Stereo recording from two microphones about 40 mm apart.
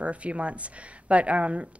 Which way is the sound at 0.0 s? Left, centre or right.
Right.